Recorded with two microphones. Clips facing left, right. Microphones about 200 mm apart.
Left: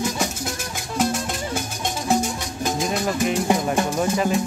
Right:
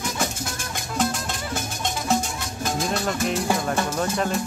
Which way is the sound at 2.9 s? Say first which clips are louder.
Left 2 dB; 5° left (ahead or behind).